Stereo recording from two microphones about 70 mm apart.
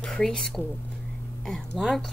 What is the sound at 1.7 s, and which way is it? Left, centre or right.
Speech, centre.